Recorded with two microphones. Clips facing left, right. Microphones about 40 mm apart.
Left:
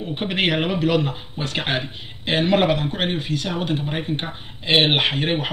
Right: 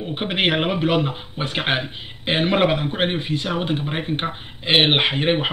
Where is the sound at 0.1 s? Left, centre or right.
Centre.